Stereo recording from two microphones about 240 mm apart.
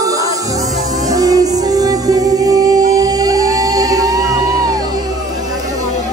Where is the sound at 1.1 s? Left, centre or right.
Centre.